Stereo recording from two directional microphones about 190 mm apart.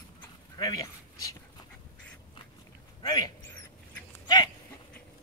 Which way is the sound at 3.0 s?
20° left (ahead or behind).